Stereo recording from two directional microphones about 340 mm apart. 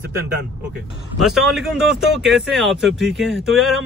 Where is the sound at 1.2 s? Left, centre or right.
Centre.